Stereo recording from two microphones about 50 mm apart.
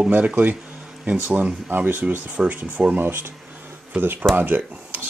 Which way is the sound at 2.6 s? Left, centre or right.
Right.